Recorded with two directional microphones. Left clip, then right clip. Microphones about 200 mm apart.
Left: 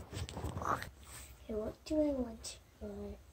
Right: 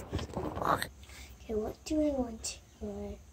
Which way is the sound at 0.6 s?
35° right (ahead or behind).